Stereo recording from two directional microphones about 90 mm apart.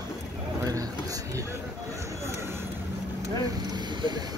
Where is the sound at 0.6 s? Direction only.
40° right (ahead or behind).